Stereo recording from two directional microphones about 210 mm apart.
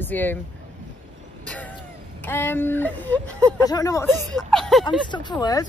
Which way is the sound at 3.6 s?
15° left (ahead or behind).